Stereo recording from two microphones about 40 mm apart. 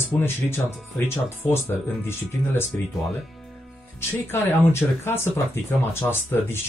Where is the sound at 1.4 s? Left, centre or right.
Left.